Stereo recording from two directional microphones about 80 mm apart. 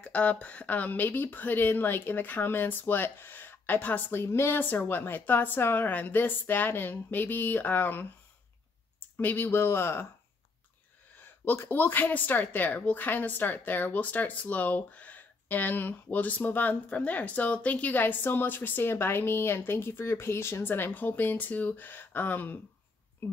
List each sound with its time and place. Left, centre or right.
0.0 s speech: centre
9.1 s speech: left
11.4 s speech: left